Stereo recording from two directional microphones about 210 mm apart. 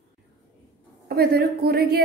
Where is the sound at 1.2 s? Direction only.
50° right (ahead or behind).